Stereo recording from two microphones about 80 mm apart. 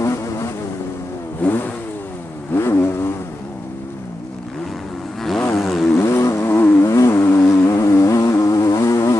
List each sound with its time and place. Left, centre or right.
0.0 s vehicle: left
1.4 s vehicle: left
5.6 s vehicle: centre
5.9 s vehicle: left